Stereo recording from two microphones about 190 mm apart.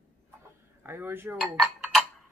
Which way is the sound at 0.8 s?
10° right (ahead or behind).